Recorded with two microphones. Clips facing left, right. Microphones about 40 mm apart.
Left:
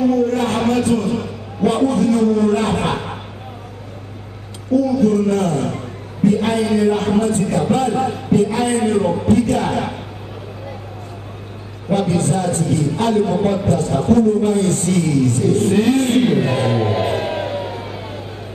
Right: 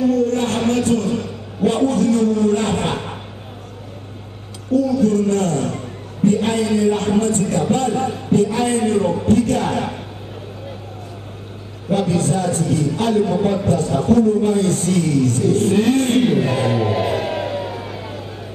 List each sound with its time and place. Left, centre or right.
0.1 s a sound: left
1.8 s a man's voice: left
2.6 s a man's voice: centre
4.9 s a man's voice: centre
11.9 s a man's voice: centre
16.4 s music: left